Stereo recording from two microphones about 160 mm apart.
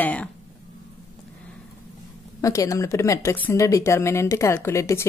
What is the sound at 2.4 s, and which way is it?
Speech, 20° left (ahead or behind).